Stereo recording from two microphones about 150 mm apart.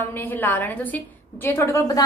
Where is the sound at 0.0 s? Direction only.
15° left (ahead or behind).